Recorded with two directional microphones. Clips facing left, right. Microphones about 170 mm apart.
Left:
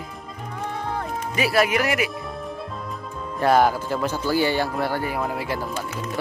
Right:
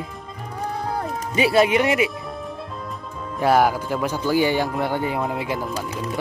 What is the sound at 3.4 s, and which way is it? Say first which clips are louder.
Speech: even; 10° right (ahead or behind).